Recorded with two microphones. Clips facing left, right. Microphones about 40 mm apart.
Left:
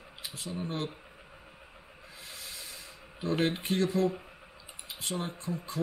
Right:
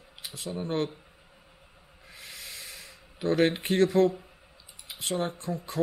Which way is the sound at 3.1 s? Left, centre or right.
Right.